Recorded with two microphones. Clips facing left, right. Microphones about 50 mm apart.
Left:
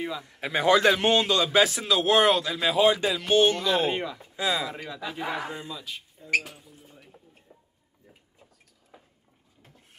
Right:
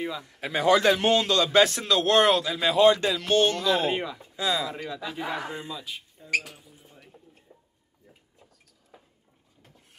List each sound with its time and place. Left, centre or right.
0.0 s speech: centre
0.4 s speech: left
0.8 s a man's voice: centre
4.2 s a man's voice: centre
6.5 s cutlery: centre